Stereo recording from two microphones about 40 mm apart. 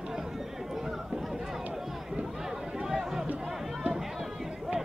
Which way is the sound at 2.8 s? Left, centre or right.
Centre.